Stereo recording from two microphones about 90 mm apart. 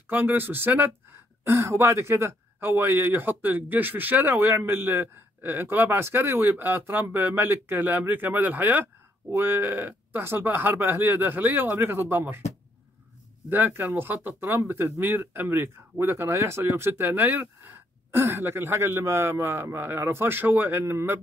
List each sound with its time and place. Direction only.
0.0 s speech: 20° right (ahead or behind)
13.5 s speech: 20° right (ahead or behind)